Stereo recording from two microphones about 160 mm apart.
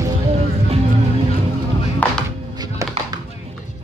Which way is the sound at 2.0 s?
10° left (ahead or behind).